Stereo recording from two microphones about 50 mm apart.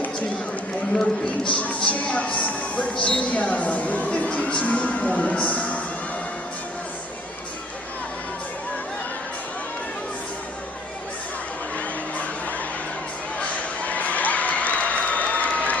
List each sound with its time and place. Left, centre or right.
1.6 s speech: left
11.7 s a sound: left
13.4 s crowd: left